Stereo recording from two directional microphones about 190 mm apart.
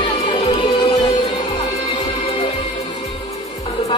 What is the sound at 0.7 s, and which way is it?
Music, 20° left (ahead or behind).